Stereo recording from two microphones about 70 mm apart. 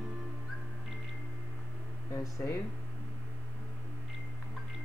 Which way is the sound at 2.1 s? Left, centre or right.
Left.